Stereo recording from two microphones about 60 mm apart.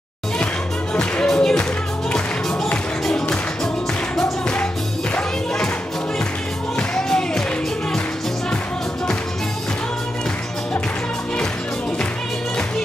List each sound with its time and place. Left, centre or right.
0.9 s music: centre
4.2 s music: centre
7.0 s music: centre